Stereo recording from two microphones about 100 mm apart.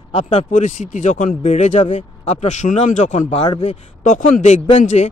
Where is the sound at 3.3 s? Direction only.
90° left.